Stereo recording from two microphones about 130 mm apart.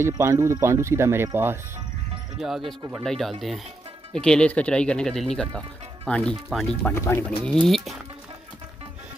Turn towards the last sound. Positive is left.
turn(degrees=0)  # may be behind; listen again after turning